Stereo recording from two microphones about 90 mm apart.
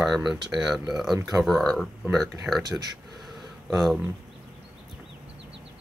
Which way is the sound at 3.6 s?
Centre (ahead or behind).